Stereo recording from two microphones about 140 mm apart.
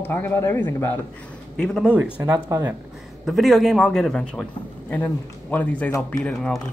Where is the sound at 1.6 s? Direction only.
5° left (ahead or behind).